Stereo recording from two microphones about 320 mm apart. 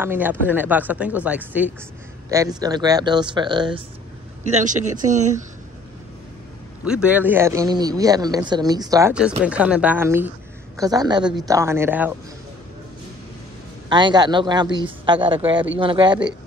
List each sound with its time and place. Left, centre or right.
0.0 s a man's voice: centre; by 5.4 s right
6.8 s a man's voice: centre
13.8 s a man's voice: centre